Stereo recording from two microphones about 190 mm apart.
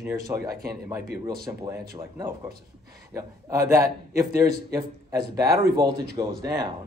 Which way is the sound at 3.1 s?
15° right (ahead or behind).